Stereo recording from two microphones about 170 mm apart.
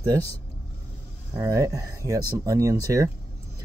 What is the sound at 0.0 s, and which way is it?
Speech, 20° right (ahead or behind).